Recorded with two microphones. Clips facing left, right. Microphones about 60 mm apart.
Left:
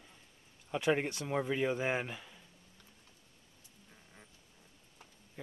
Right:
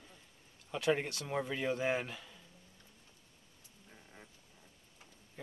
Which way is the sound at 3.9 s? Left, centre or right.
Centre.